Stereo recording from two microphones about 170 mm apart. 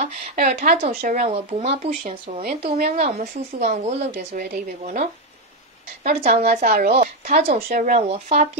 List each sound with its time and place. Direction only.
0.0 s a woman's voice: 50° right (ahead or behind)
1.3 s speech: 35° right (ahead or behind)
2.4 s speech: 60° right (ahead or behind)
3.1 s a woman's voice: 40° right (ahead or behind); by 6.5 s 55° right (ahead or behind)
6.9 s speech: 40° right (ahead or behind)
7.3 s a woman's voice: 60° right (ahead or behind); by 8.5 s 40° right (ahead or behind)